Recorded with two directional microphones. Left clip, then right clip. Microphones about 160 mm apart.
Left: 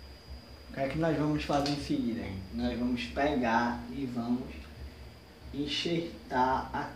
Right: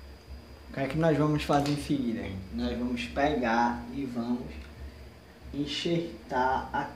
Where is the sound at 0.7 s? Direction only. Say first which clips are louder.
Right 4 dB; 55° right (ahead or behind).